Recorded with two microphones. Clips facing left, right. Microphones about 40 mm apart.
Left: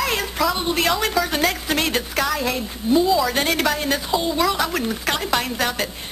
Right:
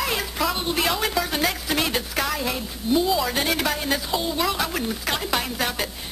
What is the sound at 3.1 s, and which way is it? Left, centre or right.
Speech, centre.